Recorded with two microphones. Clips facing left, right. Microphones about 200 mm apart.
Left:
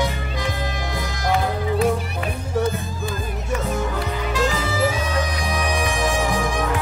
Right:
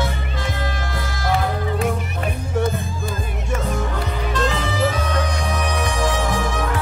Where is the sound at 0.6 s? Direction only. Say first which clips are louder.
Even; 15° left (ahead or behind).